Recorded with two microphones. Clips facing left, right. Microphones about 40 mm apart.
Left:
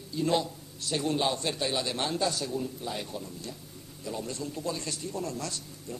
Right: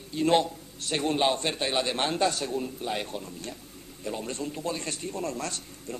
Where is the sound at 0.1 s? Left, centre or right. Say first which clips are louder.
Right 4 dB; right.